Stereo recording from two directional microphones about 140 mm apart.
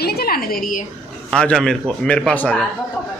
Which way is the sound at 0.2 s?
90° left.